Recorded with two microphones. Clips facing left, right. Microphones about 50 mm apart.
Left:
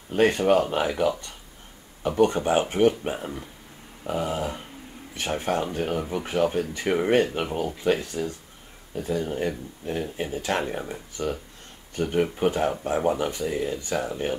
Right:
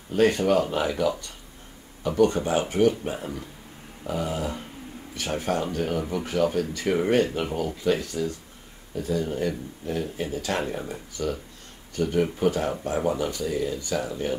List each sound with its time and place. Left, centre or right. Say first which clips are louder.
0.1 s speech: left 1 dB; left
2.0 s speech: even; left
3.2 s speech: even; centre